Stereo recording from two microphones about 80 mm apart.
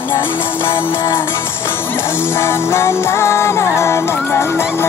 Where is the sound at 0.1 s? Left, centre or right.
Left.